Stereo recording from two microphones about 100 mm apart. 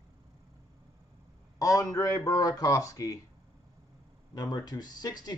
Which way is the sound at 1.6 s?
35° left (ahead or behind).